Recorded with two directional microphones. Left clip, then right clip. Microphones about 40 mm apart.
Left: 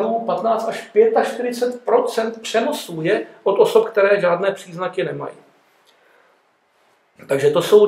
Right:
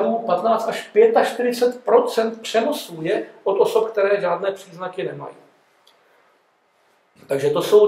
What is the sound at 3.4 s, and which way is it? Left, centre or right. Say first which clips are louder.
Speech: left 3 dB; left.